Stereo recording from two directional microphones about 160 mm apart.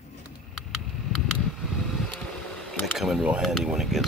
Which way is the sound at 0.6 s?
Centre (ahead or behind).